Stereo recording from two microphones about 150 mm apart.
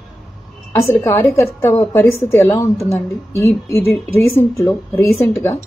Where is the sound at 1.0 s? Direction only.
20° left (ahead or behind).